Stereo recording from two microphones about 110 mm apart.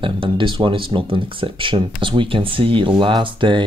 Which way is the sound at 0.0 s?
50° right (ahead or behind).